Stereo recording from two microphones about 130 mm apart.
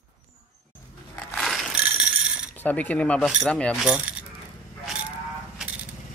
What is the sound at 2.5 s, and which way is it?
Cutlery, 10° left (ahead or behind).